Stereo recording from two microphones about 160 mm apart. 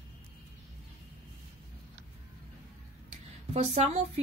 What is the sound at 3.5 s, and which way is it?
Speech, 40° right (ahead or behind).